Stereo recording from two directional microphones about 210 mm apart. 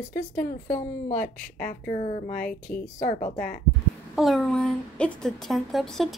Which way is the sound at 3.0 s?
40° left (ahead or behind).